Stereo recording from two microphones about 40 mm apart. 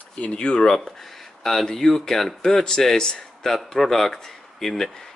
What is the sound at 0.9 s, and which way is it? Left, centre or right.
Speech, centre.